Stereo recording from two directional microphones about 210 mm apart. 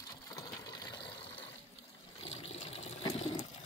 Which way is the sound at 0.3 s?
15° left (ahead or behind).